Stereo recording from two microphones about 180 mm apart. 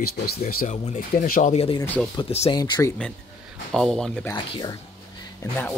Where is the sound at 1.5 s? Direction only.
35° left (ahead or behind).